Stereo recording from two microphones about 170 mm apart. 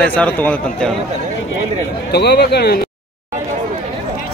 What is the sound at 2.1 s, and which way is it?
Speech, 75° left (ahead or behind).